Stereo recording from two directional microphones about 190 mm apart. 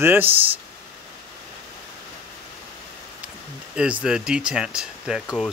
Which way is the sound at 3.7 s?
5° right (ahead or behind).